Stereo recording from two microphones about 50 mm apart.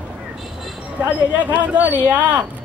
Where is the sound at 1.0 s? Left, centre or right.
Right.